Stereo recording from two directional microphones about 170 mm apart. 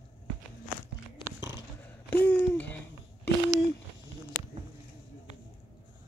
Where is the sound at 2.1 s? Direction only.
10° left (ahead or behind).